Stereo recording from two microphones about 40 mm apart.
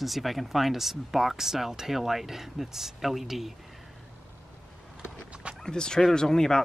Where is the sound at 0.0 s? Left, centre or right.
Centre.